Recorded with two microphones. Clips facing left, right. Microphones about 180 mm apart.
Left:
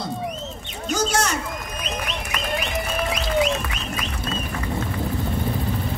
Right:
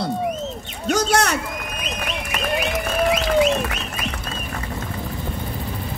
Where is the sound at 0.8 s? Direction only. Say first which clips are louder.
Right 4 dB; 65° right (ahead or behind).